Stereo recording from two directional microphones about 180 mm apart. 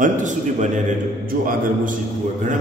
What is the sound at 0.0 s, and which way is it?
Speech, 45° right (ahead or behind).